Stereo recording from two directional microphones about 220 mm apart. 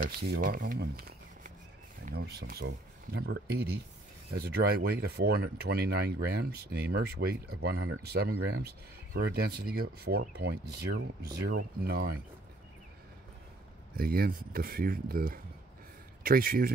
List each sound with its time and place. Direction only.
0.0 s speech: 40° right (ahead or behind)
13.9 s a man's voice: 45° right (ahead or behind)